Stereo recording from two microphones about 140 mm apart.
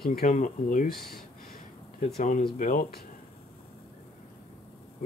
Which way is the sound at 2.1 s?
65° left (ahead or behind).